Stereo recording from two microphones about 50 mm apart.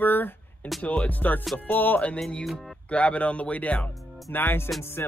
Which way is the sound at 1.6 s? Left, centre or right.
Left.